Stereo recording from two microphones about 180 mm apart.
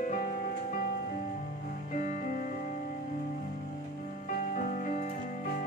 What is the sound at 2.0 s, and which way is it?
Music, 45° left (ahead or behind).